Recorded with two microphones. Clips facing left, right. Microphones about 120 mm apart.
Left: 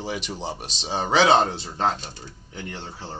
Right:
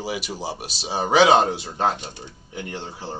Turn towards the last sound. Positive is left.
turn(degrees=-15)  # may be behind; listen again after turning